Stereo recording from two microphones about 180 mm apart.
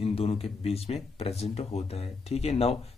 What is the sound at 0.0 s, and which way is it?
Speech, 30° left (ahead or behind).